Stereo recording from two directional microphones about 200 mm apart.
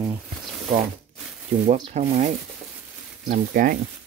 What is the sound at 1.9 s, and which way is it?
Speech, 35° right (ahead or behind).